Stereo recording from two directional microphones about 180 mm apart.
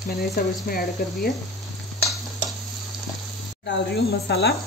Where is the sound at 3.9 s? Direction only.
65° left (ahead or behind).